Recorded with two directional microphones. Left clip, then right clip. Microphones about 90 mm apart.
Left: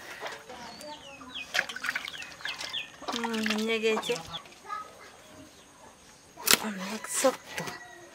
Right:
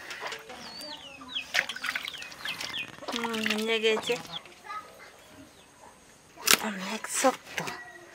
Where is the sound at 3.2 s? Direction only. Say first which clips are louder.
Right 1 dB; centre (ahead or behind).